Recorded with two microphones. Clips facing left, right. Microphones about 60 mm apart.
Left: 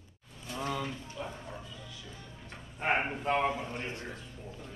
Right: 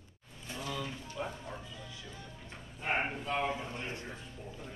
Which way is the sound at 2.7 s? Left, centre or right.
Left.